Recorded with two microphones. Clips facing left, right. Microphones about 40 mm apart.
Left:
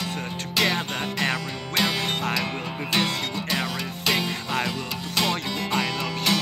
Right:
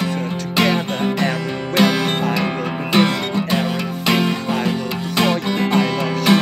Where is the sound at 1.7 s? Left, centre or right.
Right.